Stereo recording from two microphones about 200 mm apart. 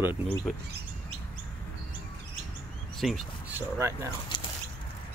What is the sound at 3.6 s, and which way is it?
Speech, 15° right (ahead or behind).